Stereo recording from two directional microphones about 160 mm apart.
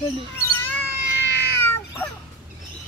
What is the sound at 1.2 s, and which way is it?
Cat, 90° left.